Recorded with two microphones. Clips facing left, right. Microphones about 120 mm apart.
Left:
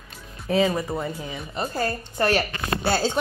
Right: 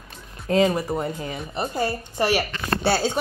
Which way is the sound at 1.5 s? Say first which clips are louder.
Right 1 dB; 25° right (ahead or behind).